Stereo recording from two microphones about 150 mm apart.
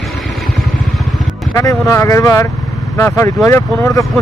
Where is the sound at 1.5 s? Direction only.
20° left (ahead or behind).